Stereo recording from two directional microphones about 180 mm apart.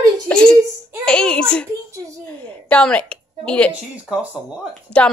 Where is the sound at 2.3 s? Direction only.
5° left (ahead or behind).